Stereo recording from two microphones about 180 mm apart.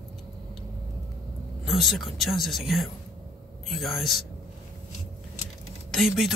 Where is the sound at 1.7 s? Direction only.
Centre (ahead or behind).